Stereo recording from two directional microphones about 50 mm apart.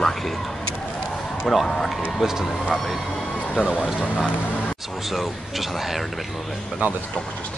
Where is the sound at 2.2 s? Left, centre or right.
Centre.